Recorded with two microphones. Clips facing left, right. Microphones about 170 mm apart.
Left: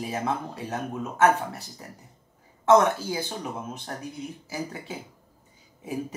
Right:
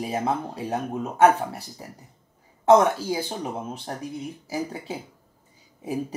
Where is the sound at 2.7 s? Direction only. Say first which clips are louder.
Right 2 dB; 35° right (ahead or behind).